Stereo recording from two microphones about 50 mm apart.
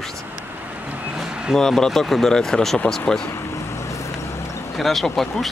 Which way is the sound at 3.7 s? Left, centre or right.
Left.